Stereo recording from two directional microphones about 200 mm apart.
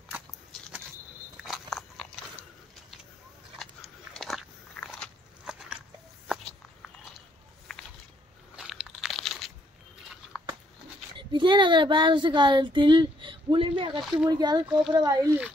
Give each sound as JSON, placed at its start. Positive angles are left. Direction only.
{"t": 1.3, "sound": "biting", "side_deg": 0}
{"t": 3.5, "sound": "biting", "side_deg": 0}
{"t": 6.2, "sound": "a sound", "side_deg": 5}
{"t": 8.5, "sound": "crunch", "side_deg": -5}
{"t": 11.1, "sound": "speech", "side_deg": -25}